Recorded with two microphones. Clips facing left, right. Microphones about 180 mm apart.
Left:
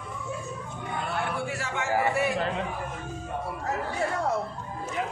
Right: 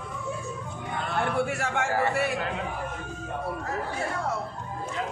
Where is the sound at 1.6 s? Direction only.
55° right (ahead or behind).